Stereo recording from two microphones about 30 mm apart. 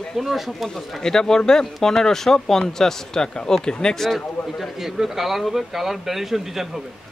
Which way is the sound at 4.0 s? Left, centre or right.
Centre.